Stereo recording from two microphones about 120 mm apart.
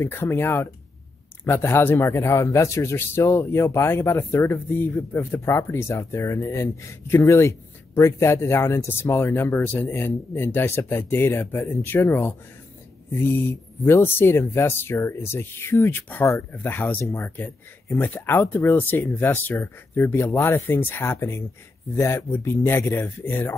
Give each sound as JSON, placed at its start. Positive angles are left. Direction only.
{"t": 0.0, "sound": "speech", "side_deg": 20}